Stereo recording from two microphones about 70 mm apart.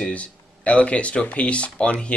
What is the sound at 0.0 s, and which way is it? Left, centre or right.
Speech, centre.